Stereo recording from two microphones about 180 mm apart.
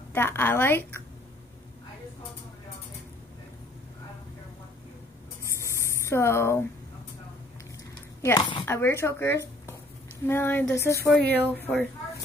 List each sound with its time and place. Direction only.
0.1 s a woman's voice: 10° left (ahead or behind)
5.6 s a sound: 15° left (ahead or behind)
8.4 s speech: 25° left (ahead or behind)
8.6 s a woman's voice: 15° left (ahead or behind)